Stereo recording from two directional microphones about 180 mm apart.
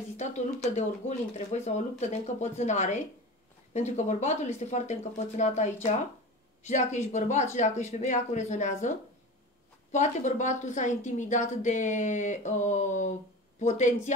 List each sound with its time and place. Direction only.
0.2 s speech: 40° left (ahead or behind)
6.7 s speech: 40° left (ahead or behind)